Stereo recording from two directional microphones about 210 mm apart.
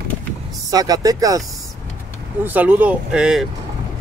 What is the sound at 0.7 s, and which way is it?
Speech, 15° right (ahead or behind).